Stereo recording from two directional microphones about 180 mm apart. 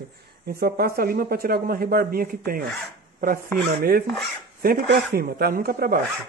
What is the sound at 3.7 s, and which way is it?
Speech, 55° right (ahead or behind).